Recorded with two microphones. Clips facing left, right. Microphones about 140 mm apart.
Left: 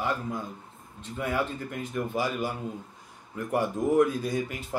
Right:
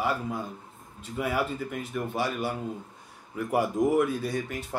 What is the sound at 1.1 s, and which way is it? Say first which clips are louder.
Speech: right 1 dB; 5° right (ahead or behind).